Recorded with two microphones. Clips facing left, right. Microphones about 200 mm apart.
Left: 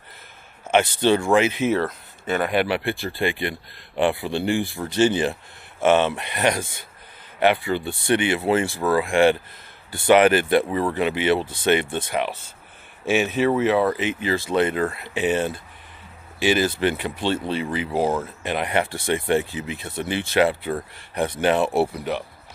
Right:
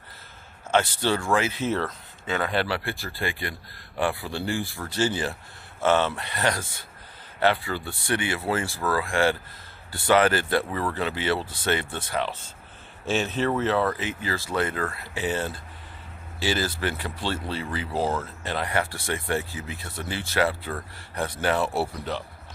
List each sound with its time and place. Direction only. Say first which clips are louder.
0.7 s speech: left 5 dB; 20° left (ahead or behind)